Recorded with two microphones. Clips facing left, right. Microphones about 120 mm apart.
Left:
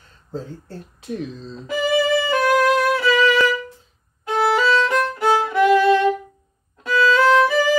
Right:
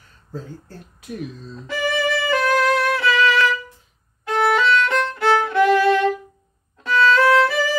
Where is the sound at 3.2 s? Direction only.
20° left (ahead or behind).